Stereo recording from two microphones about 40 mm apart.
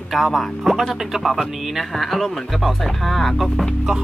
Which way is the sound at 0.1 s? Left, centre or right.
Centre.